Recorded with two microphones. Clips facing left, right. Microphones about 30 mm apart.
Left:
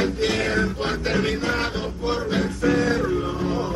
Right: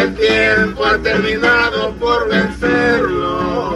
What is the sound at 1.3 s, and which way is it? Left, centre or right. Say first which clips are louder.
Music: right 12 dB; right.